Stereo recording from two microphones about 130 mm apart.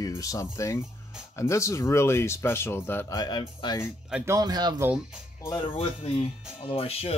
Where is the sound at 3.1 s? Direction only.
30° left (ahead or behind).